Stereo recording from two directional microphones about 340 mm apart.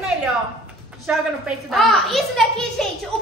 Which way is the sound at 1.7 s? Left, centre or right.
Centre.